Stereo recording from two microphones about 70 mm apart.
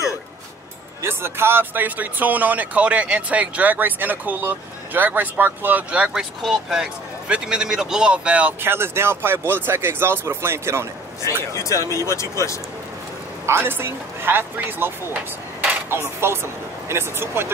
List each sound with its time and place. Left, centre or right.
1.0 s speech: right
6.1 s speech: centre
8.5 s speech: right
11.5 s speech: left
13.5 s speech: right
16.2 s speech: right